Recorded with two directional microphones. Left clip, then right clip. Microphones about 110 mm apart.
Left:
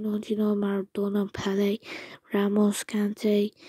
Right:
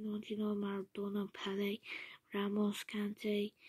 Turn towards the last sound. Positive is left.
turn(degrees=60)  # may be behind; listen again after turning